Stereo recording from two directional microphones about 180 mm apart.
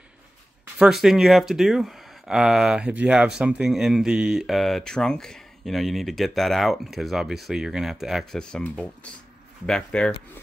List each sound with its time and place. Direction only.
0.7 s speech: centre (ahead or behind)